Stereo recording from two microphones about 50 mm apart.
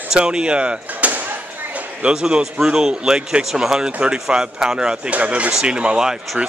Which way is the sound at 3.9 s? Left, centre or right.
Right.